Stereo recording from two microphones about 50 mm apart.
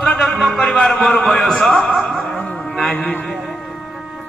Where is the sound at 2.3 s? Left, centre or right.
Centre.